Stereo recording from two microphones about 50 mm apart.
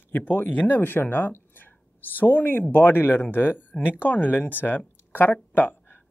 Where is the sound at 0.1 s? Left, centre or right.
Left.